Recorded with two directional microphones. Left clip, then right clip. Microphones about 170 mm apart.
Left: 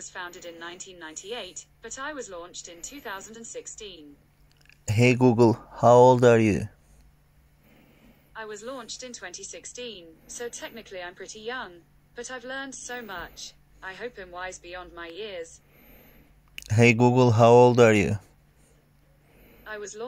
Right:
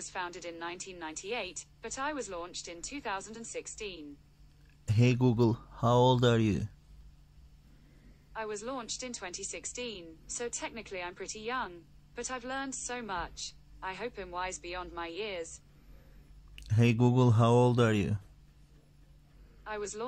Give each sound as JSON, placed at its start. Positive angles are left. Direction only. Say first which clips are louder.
{"t": 0.0, "sound": "a woman's voice", "louder": "left 1 dB", "side_deg": 0}
{"t": 4.8, "sound": "speech", "louder": "left 9 dB", "side_deg": 25}
{"t": 8.3, "sound": "a woman's voice", "louder": "left 1 dB", "side_deg": 0}
{"t": 10.4, "sound": "a woman's voice", "louder": "left 2 dB", "side_deg": 0}
{"t": 16.5, "sound": "speech", "louder": "left 11 dB", "side_deg": 30}